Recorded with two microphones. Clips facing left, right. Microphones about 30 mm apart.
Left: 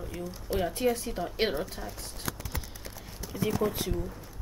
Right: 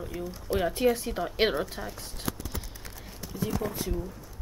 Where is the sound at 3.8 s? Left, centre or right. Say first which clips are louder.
Even; centre.